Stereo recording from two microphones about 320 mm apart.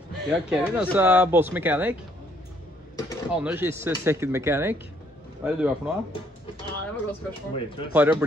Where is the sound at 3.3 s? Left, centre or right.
Centre.